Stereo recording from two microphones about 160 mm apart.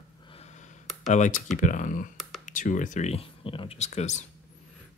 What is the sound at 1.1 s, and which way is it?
Speech, 50° left (ahead or behind).